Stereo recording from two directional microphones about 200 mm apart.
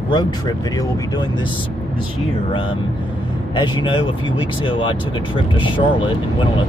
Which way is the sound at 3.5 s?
25° left (ahead or behind).